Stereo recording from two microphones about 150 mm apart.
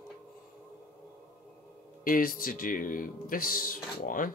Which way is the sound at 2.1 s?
70° left (ahead or behind).